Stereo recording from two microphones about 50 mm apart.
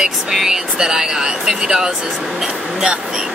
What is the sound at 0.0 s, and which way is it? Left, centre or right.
Speech, centre.